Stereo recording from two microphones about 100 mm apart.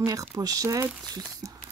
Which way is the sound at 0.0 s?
35° right (ahead or behind).